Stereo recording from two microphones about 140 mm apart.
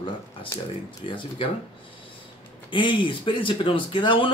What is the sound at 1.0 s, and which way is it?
Speech, 35° left (ahead or behind).